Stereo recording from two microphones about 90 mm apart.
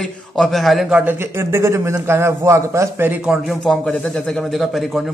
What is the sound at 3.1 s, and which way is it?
Speech, 10° right (ahead or behind).